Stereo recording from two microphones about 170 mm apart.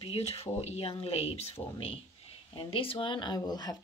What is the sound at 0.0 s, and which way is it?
Speech, 35° left (ahead or behind).